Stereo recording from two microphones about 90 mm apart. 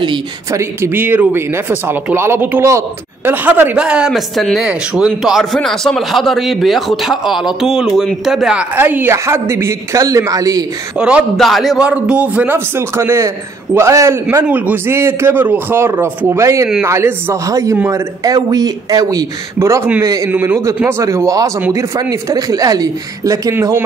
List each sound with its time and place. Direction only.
0.5 s a man's voice: 30° right (ahead or behind); by 4.2 s 10° right (ahead or behind)
4.4 s a man's voice: centre (ahead or behind)
4.6 s a man's voice: 10° right (ahead or behind)
8.7 s a man's voice: 20° right (ahead or behind); by 10.6 s 40° right (ahead or behind)
11.0 s a man's voice: 10° right (ahead or behind)
11.3 s a man's voice: centre (ahead or behind)
11.8 s a man's voice: 15° right (ahead or behind); by 19.2 s 45° right (ahead or behind)
19.6 s speech: 30° right (ahead or behind)
20.2 s speech: 20° right (ahead or behind); by 23.5 s 40° right (ahead or behind)